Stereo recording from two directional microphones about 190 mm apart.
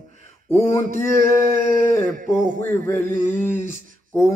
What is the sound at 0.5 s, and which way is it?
Speech, 40° left (ahead or behind).